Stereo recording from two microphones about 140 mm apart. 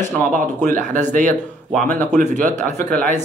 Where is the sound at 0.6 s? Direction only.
65° right (ahead or behind).